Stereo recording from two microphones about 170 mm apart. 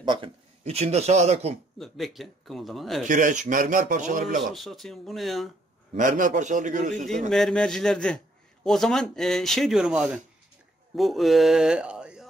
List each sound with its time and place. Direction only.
0.0 s speech: 30° right (ahead or behind)
1.8 s speech: centre (ahead or behind)
3.1 s speech: 50° right (ahead or behind)
4.6 s speech: centre (ahead or behind)
5.9 s speech: 50° right (ahead or behind)
7.2 s speech: centre (ahead or behind)